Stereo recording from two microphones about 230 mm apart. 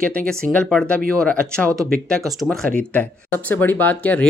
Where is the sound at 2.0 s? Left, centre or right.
Centre.